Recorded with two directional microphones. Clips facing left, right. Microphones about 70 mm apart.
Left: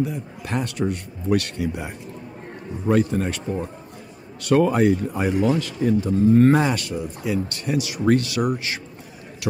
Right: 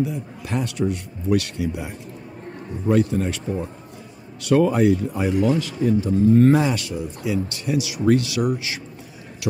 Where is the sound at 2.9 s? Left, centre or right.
Left.